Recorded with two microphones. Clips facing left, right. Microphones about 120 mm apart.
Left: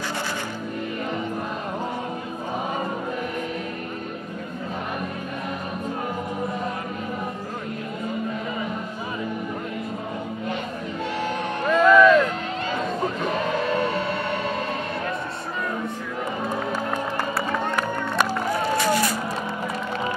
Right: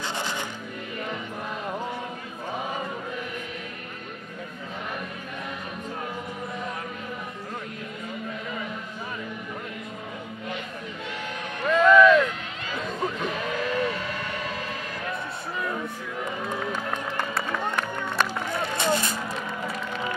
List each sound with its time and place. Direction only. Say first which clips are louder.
11.6 s vehicle: left 1 dB; 5° left (ahead or behind)
12.7 s music: left 1 dB; 30° left (ahead or behind)
16.5 s music: left 4 dB; 10° left (ahead or behind)
18.8 s a sound: left 1 dB; 25° right (ahead or behind)